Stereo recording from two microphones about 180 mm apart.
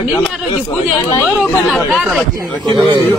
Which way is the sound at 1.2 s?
10° left (ahead or behind).